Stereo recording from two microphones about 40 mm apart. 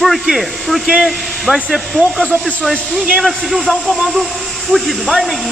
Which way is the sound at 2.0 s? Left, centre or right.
Left.